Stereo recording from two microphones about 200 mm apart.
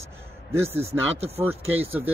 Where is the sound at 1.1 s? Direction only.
30° right (ahead or behind).